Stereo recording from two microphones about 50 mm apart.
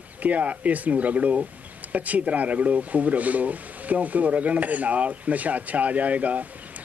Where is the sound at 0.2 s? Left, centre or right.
Right.